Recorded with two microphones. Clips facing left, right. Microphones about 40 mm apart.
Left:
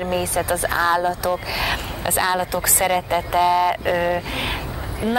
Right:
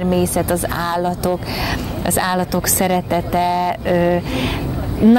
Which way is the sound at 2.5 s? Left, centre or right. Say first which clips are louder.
Right 3 dB; left.